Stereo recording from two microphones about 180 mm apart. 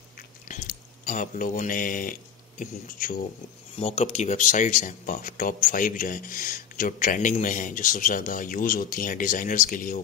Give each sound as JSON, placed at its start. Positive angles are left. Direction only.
{"t": 0.5, "sound": "speech", "side_deg": 45}
{"t": 3.7, "sound": "speech", "side_deg": 35}